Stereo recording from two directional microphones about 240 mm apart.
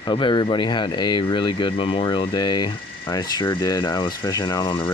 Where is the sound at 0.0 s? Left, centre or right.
Left.